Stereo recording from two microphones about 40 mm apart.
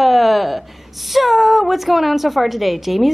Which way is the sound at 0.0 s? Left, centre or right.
Centre.